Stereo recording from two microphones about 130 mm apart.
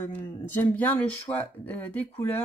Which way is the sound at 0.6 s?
15° left (ahead or behind).